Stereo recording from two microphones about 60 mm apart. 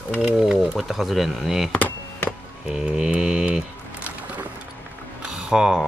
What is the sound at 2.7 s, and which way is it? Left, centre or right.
Music, centre.